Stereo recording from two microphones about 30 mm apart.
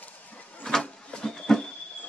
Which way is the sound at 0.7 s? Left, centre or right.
Left.